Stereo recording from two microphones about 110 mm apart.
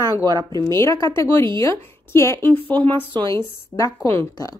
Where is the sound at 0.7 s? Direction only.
25° left (ahead or behind).